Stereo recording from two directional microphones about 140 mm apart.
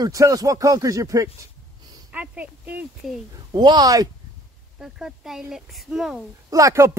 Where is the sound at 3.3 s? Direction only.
30° right (ahead or behind).